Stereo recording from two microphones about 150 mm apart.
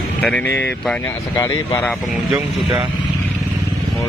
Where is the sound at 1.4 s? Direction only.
25° left (ahead or behind).